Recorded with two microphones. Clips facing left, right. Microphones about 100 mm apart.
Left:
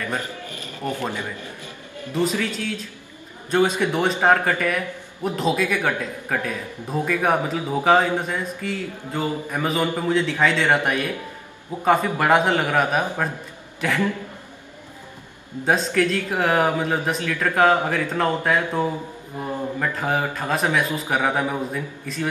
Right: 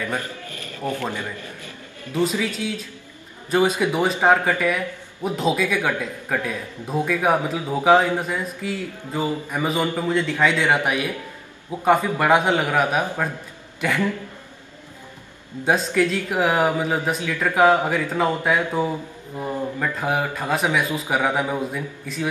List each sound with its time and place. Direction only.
0.5 s music: 20° left (ahead or behind)
2.1 s a man's voice: 5° right (ahead or behind)
15.6 s speech: 5° right (ahead or behind)